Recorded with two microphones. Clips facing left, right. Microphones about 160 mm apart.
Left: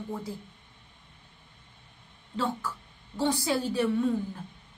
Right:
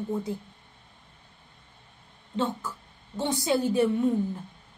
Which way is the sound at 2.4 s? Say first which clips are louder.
Right 2 dB; 20° right (ahead or behind).